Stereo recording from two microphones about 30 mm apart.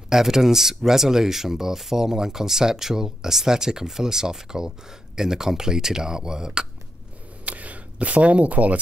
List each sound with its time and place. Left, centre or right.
0.1 s speech: centre
7.4 s camera: right